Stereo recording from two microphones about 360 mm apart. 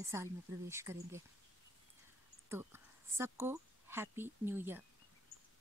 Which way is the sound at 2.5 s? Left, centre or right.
Centre.